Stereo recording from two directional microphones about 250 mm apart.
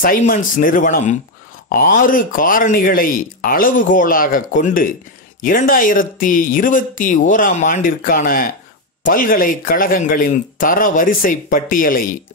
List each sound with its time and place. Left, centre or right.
0.0 s speech: left